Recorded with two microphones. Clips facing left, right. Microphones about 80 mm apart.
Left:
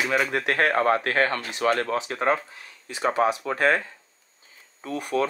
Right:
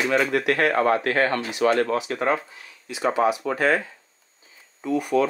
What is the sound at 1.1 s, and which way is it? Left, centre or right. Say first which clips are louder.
Speech: right 2 dB; centre.